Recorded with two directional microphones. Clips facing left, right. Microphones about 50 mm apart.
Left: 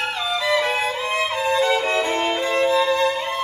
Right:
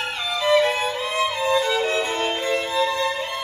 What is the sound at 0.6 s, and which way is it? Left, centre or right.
Violin, left.